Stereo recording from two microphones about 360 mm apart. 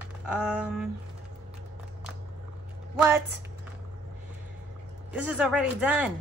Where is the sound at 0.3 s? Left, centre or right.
Centre.